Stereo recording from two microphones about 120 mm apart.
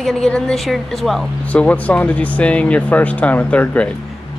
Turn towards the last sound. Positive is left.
turn(degrees=15)  # may be behind; listen again after turning